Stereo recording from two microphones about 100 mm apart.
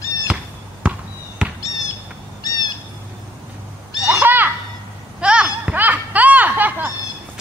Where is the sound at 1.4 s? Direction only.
10° right (ahead or behind).